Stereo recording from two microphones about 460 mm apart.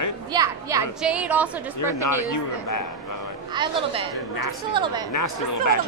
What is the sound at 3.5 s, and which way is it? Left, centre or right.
Speech, centre.